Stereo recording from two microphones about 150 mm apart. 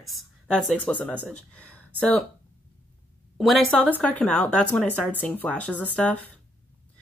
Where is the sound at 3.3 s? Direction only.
Centre (ahead or behind).